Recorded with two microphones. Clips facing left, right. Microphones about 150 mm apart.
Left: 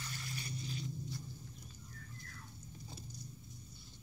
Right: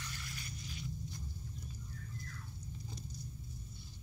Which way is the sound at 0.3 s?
30° left (ahead or behind).